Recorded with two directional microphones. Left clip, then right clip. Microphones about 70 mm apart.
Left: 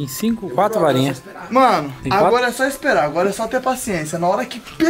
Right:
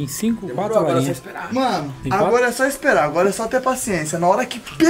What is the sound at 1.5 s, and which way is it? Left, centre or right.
Speech, left.